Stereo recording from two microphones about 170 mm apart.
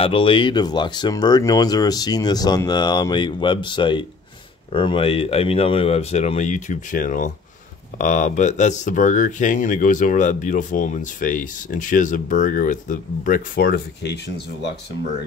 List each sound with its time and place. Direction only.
0.0 s speech: 30° left (ahead or behind); by 14.7 s 85° left